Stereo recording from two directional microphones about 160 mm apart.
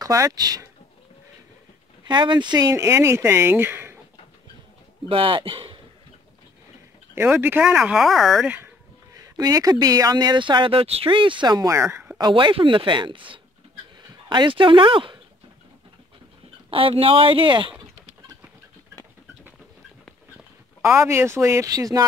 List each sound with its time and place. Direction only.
0.0 s speech: 20° right (ahead or behind)
2.0 s speech: 30° right (ahead or behind)
5.0 s speech: 35° right (ahead or behind)
7.2 s speech: 15° right (ahead or behind)
8.5 s speech: 15° right (ahead or behind)
12.2 s speech: 30° right (ahead or behind)
16.7 s speech: 35° right (ahead or behind)
20.8 s speech: 15° right (ahead or behind)